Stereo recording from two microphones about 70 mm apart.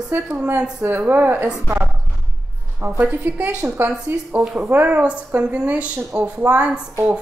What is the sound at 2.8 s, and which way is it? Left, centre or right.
A woman's voice, right.